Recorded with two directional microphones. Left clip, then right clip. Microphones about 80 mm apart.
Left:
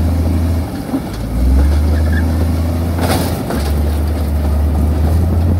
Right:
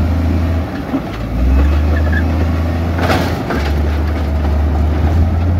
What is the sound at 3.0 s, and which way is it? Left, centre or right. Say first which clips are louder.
Vehicle: right 2 dB; left.